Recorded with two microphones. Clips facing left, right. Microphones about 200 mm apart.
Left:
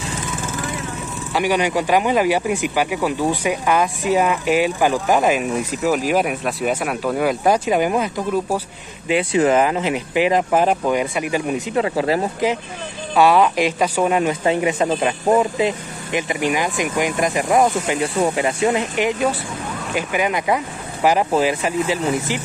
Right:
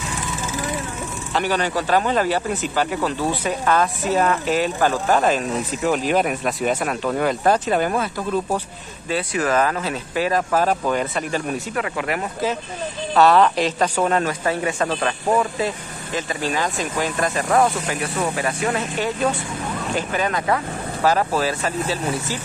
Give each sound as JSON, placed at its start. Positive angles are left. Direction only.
{"t": 1.3, "sound": "speech", "side_deg": 15}
{"t": 11.7, "sound": "speech", "side_deg": 30}
{"t": 13.1, "sound": "speech", "side_deg": 10}
{"t": 18.0, "sound": "speech", "side_deg": 25}